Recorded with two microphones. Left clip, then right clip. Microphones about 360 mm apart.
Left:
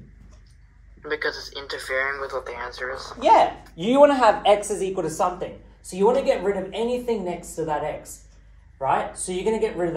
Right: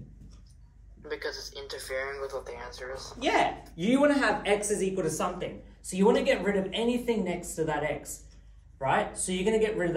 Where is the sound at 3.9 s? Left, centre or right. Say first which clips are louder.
Left 9 dB; centre.